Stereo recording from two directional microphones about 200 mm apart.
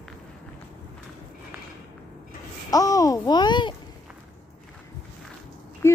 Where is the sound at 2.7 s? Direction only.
15° left (ahead or behind).